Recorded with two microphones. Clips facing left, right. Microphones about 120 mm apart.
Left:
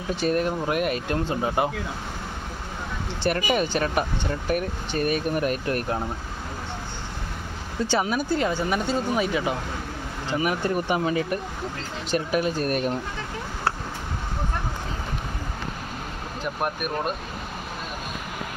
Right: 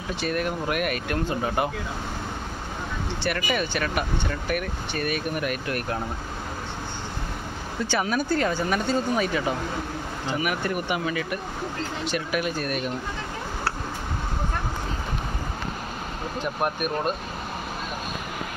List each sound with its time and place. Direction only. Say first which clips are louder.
0.2 s speech: left 3 dB; 30° left (ahead or behind)
3.3 s speech: left 4 dB; 35° left (ahead or behind)
8.0 s speech: right 3 dB; 20° left (ahead or behind)
10.4 s speech: left 4 dB; 30° left (ahead or behind)
16.6 s speech: right 1 dB; 5° left (ahead or behind)